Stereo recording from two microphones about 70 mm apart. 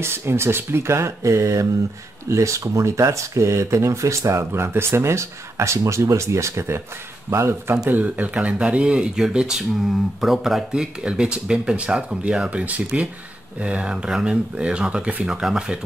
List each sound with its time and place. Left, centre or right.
0.0 s speech: right
7.9 s speech: right